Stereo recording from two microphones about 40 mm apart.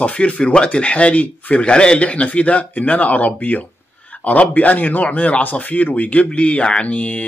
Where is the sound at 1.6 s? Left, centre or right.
Left.